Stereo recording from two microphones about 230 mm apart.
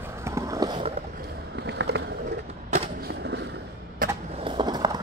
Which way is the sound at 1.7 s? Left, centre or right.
Right.